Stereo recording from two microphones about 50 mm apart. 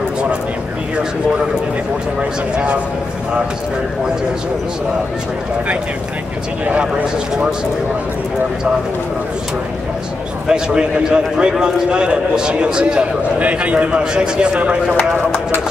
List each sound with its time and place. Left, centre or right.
2.5 s a man's voice: right
6.6 s a man's voice: right
10.5 s a man's voice: centre
13.4 s a man's voice: right